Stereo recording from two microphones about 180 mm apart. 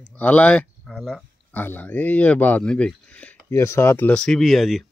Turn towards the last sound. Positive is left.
turn(degrees=0)  # may be behind; listen again after turning